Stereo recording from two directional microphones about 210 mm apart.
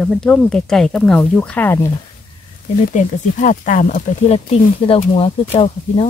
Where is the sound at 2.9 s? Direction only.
35° left (ahead or behind).